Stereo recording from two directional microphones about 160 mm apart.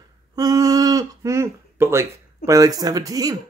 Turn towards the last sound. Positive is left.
turn(degrees=-20)  # may be behind; listen again after turning